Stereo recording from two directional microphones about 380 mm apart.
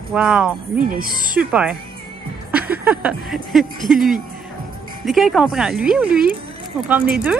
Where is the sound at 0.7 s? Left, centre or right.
Right.